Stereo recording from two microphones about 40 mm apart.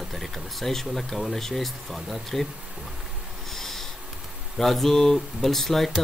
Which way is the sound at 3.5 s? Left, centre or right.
Centre.